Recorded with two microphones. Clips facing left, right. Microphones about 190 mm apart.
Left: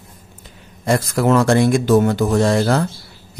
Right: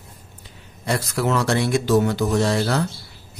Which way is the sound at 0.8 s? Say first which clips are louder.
Left 6 dB; 50° left (ahead or behind).